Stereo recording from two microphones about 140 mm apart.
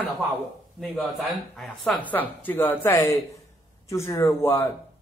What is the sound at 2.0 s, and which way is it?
Speech, 10° left (ahead or behind).